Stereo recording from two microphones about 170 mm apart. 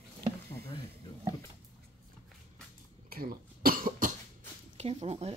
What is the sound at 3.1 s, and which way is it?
Cough, 60° right (ahead or behind).